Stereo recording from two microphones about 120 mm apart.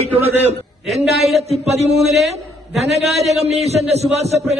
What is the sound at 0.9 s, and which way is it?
A man's voice, 60° right (ahead or behind).